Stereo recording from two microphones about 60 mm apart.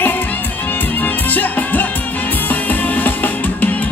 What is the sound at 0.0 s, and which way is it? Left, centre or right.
Music, left.